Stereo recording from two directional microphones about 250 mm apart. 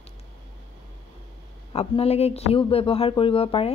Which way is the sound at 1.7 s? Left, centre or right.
Left.